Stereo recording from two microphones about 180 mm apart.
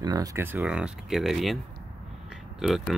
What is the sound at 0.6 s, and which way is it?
Speech, 5° right (ahead or behind).